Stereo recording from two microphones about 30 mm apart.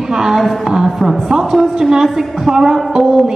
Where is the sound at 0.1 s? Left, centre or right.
Centre.